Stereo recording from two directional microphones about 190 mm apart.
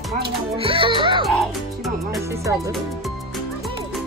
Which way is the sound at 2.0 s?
15° right (ahead or behind).